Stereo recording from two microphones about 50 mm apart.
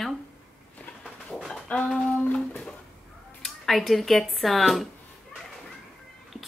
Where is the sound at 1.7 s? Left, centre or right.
Left.